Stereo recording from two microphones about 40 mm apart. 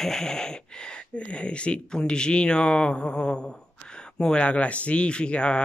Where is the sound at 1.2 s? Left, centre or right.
Left.